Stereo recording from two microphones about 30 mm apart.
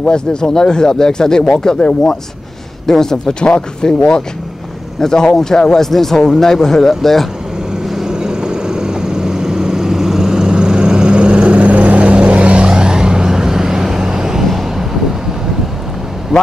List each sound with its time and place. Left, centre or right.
0.1 s speech: left
2.9 s speech: centre
7.9 s vehicle: centre; by 12.5 s right
12.5 s vehicle: right
14.4 s vehicle: centre